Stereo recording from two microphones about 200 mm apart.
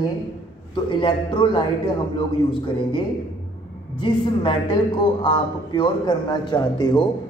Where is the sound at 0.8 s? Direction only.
25° left (ahead or behind).